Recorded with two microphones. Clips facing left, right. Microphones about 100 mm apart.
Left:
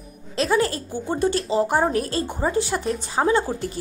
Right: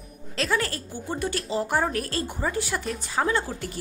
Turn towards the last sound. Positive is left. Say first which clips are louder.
# left 6 dB
turn(degrees=25)  # may be behind; listen again after turning